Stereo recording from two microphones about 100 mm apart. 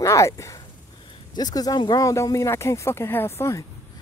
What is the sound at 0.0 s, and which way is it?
Speech, 30° left (ahead or behind).